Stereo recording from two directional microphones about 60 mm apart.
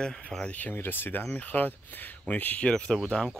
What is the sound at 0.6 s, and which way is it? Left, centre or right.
Speech, left.